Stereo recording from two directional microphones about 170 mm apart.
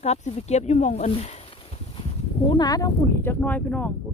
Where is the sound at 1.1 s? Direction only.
40° left (ahead or behind).